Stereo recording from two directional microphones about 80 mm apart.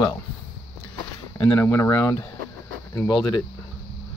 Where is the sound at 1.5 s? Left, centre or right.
Left.